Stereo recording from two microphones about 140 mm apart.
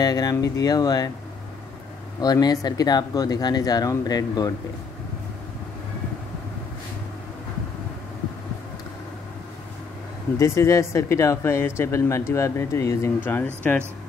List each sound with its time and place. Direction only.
0.0 s speech: 30° left (ahead or behind)
2.2 s speech: 25° left (ahead or behind)
10.4 s speech: 20° left (ahead or behind)